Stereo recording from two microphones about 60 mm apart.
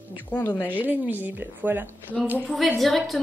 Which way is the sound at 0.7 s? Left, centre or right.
Right.